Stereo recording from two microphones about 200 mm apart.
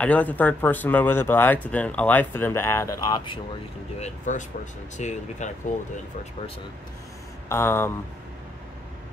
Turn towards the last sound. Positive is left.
turn(degrees=10)  # may be behind; listen again after turning